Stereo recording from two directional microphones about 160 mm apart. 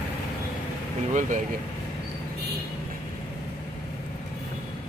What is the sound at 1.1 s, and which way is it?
Speech, 50° right (ahead or behind).